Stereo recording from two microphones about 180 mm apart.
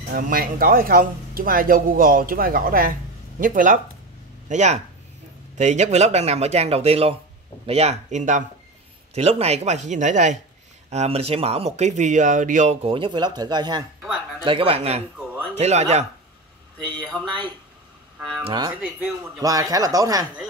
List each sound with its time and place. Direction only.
0.1 s speech: 55° right (ahead or behind); by 16.1 s 35° right (ahead or behind)
16.7 s speech: 5° left (ahead or behind)
18.4 s speech: 25° right (ahead or behind)